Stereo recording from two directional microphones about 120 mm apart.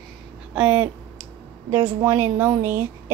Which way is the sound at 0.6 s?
10° right (ahead or behind).